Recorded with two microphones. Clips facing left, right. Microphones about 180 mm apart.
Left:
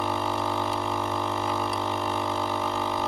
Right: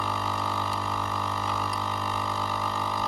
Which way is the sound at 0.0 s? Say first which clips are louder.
Left 4 dB; 25° left (ahead or behind).